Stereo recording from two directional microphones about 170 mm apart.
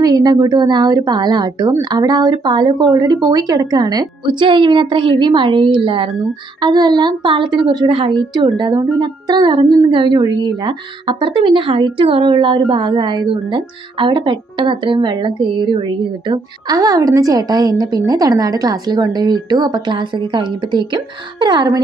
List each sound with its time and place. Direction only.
0.0 s a woman's voice: 25° right (ahead or behind)